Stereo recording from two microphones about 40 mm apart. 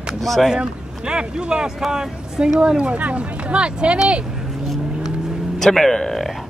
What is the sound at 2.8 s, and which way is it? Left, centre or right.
Speech, right.